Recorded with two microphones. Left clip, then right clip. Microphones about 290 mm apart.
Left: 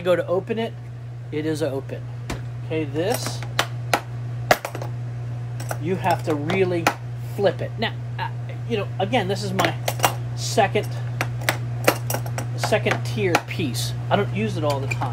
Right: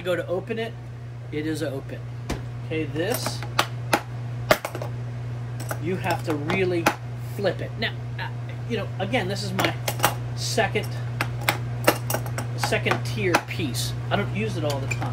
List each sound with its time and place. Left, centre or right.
0.0 s speech: left
2.7 s coin: centre
4.5 s coin: centre
5.9 s speech: left
9.6 s cutlery: centre
10.4 s speech: centre
11.1 s a sound: centre
13.0 s coin: centre
13.5 s speech: left